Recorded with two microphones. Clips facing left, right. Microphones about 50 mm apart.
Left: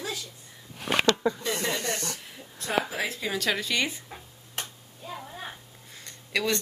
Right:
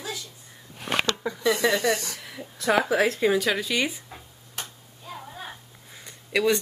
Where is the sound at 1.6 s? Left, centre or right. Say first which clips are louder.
Right 7 dB; right.